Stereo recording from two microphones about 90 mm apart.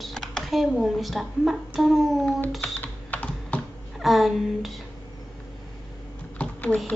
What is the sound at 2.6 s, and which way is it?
Typing, 20° left (ahead or behind).